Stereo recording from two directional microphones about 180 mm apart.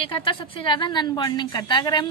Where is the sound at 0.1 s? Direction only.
30° left (ahead or behind).